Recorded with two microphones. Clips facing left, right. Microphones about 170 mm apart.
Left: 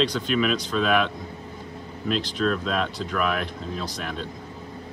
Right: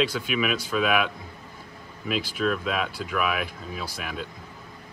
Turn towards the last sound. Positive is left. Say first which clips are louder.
# left 2 dB
turn(degrees=-5)  # may be behind; listen again after turning